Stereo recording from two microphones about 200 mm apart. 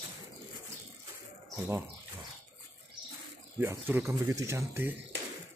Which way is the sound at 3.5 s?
10° right (ahead or behind).